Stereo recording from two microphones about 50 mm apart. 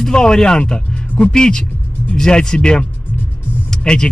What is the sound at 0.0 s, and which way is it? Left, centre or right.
A man's voice, centre.